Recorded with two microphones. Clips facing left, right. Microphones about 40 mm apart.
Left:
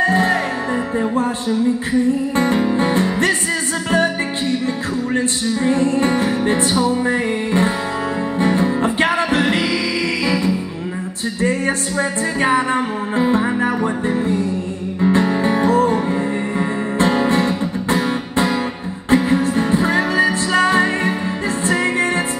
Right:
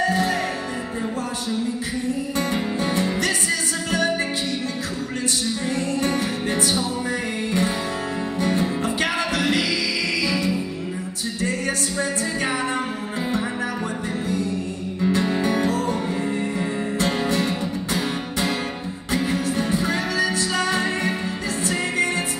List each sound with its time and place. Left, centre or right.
0.0 s music: left
2.3 s music: left